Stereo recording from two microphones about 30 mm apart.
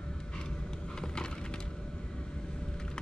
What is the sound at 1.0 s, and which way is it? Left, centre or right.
Wood, left.